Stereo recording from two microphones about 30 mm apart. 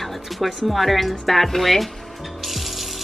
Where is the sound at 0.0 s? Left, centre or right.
Centre.